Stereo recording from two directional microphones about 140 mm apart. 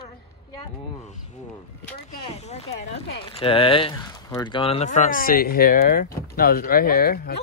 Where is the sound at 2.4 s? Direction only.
50° left (ahead or behind).